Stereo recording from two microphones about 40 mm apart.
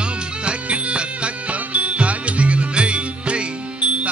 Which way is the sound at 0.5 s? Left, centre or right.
Right.